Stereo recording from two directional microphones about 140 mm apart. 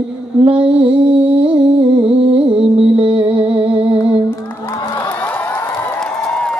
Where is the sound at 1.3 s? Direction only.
35° right (ahead or behind).